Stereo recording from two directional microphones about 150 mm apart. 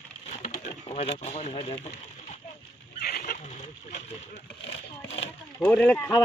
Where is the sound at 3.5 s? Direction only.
50° left (ahead or behind).